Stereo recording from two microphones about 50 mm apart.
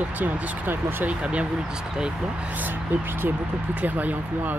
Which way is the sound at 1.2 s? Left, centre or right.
Right.